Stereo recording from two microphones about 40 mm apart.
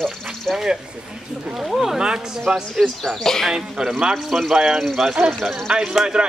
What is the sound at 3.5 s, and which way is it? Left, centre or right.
A man's voice, centre.